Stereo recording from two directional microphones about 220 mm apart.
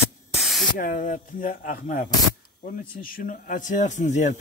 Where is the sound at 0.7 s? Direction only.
40° left (ahead or behind).